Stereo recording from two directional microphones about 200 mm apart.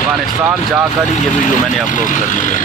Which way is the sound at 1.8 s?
40° left (ahead or behind).